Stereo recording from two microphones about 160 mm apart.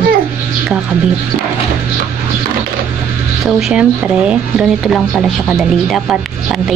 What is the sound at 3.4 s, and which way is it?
Speech, 5° right (ahead or behind).